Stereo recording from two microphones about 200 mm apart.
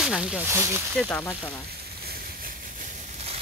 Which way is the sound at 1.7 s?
50° right (ahead or behind).